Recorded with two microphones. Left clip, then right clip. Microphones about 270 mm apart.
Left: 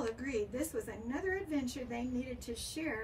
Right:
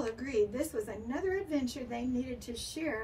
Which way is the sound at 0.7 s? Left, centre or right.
Centre.